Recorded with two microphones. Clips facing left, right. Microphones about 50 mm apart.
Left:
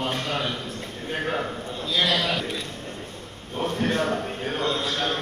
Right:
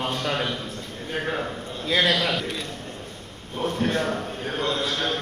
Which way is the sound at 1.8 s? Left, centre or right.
Right.